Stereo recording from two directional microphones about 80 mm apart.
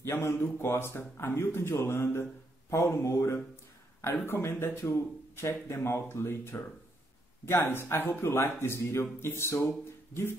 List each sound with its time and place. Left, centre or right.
0.0 s speech: left